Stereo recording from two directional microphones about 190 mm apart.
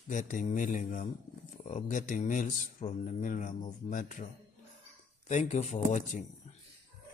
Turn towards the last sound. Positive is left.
turn(degrees=40)  # may be behind; listen again after turning